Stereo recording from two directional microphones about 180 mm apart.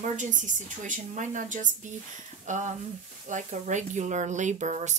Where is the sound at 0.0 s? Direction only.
45° right (ahead or behind).